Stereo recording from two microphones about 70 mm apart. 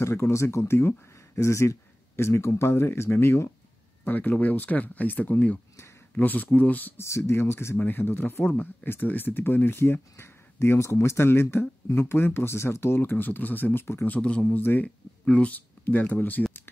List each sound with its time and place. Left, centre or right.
0.0 s speech: left
4.0 s speech: left
7.0 s speech: left
14.1 s speech: centre